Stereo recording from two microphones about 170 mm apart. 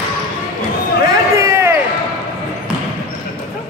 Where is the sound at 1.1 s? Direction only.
15° right (ahead or behind).